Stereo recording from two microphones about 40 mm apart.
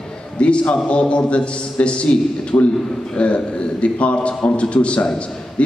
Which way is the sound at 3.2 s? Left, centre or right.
Left.